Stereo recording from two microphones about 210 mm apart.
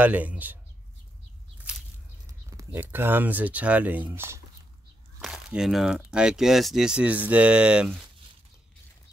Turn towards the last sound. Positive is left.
turn(degrees=-5)  # may be behind; listen again after turning